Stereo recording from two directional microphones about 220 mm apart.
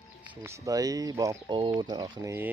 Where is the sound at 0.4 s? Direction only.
15° right (ahead or behind).